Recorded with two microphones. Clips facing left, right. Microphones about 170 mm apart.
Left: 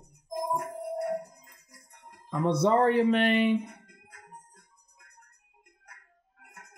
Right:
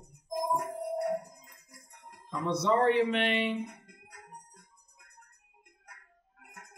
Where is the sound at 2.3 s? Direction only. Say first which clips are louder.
Left 4 dB; 55° left (ahead or behind).